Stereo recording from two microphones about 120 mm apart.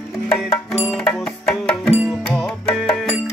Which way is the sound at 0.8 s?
5° left (ahead or behind).